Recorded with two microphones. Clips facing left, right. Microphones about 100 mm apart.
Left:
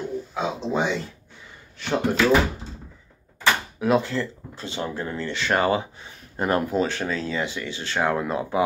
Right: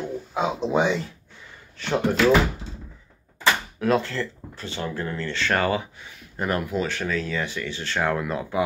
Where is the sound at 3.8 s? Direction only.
10° left (ahead or behind).